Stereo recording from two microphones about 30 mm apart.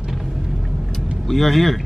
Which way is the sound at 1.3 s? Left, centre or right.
Centre.